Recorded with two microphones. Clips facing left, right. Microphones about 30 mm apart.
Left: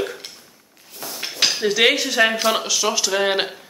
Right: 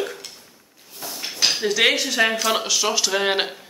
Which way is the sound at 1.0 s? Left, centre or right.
Left.